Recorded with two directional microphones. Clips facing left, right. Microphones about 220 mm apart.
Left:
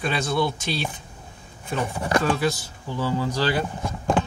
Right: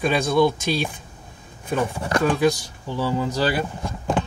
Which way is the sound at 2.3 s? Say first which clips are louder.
Right 5 dB; 15° right (ahead or behind).